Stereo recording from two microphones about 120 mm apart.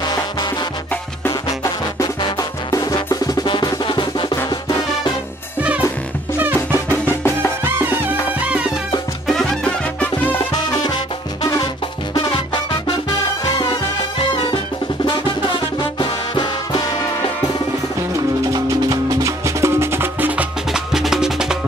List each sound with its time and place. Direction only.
0.0 s music: 35° left (ahead or behind)
5.6 s music: 10° right (ahead or behind)
6.5 s music: 20° left (ahead or behind)
7.6 s music: 20° right (ahead or behind)
9.3 s music: 5° left (ahead or behind)
14.3 s music: 45° left (ahead or behind)
16.0 s music: 40° left (ahead or behind)
18.5 s music: 30° right (ahead or behind); by 21.5 s 5° right (ahead or behind)